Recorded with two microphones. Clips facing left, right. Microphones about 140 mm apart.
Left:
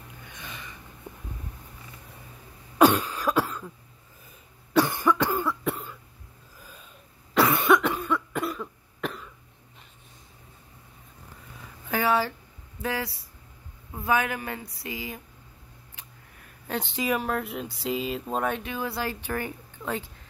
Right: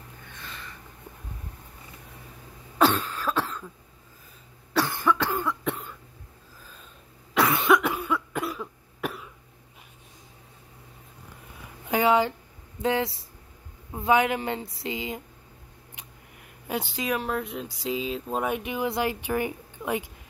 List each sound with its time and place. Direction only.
0.3 s a sound: 15° left (ahead or behind)
2.8 s cough: 15° left (ahead or behind)
4.7 s cough: 15° left (ahead or behind)
7.3 s cough: centre (ahead or behind)
11.8 s a sound: 20° right (ahead or behind)
12.8 s a man's voice: 20° right (ahead or behind)
16.6 s speech: 10° right (ahead or behind)